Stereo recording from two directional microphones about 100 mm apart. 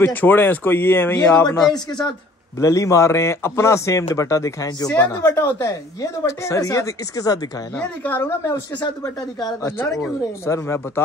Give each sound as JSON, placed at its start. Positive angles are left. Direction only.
{"t": 0.0, "sound": "speech", "side_deg": 20}
{"t": 1.7, "sound": "speech", "side_deg": 45}
{"t": 2.6, "sound": "speech", "side_deg": 30}
{"t": 7.7, "sound": "a woman's voice", "side_deg": 15}
{"t": 8.2, "sound": "speech", "side_deg": 25}
{"t": 9.0, "sound": "speech", "side_deg": 40}
{"t": 9.7, "sound": "speech", "side_deg": 25}